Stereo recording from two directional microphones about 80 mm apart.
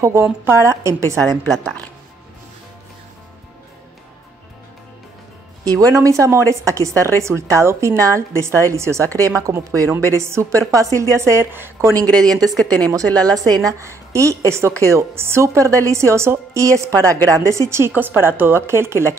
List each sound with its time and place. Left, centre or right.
0.0 s a woman's voice: right
1.5 s speech: centre
5.7 s a woman's voice: right
12.2 s a woman's voice: centre
12.8 s a woman's voice: right